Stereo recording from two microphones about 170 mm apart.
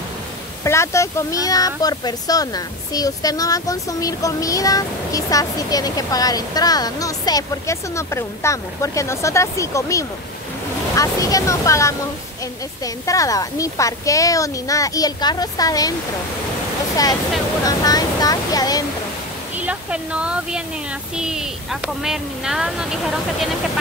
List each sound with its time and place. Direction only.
0.7 s speech: 15° left (ahead or behind)
16.9 s speech: 20° left (ahead or behind)
19.6 s speech: 5° right (ahead or behind)